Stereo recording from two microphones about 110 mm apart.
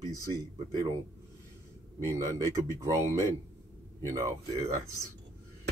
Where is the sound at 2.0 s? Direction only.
30° right (ahead or behind).